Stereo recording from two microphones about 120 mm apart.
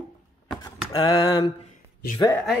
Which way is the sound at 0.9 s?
35° left (ahead or behind).